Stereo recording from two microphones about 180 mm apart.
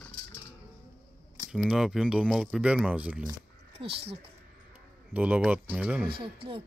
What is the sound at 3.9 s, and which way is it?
Speech, 35° right (ahead or behind).